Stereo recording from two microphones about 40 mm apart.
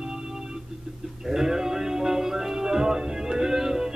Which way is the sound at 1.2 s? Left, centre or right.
Centre.